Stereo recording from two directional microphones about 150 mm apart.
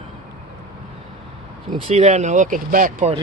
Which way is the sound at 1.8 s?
45° right (ahead or behind).